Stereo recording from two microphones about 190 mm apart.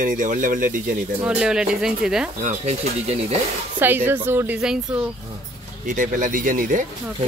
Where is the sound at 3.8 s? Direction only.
10° right (ahead or behind).